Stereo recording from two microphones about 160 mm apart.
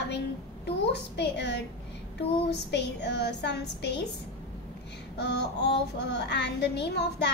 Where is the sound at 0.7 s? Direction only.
90° left.